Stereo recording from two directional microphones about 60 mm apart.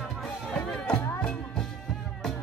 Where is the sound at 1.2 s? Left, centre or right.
Centre.